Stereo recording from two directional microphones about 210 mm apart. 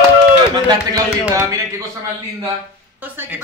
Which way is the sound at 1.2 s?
15° right (ahead or behind).